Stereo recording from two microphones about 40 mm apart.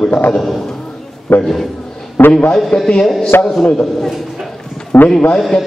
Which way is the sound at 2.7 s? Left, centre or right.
Left.